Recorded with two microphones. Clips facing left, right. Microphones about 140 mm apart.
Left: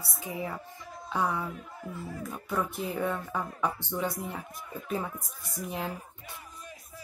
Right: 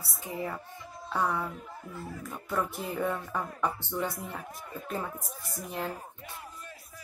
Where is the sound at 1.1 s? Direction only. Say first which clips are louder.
Even; centre (ahead or behind).